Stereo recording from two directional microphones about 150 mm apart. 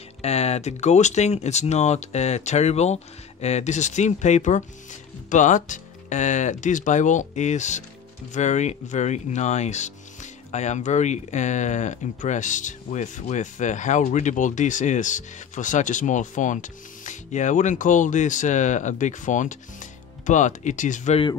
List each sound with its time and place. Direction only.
0.2 s speech: 45° left (ahead or behind)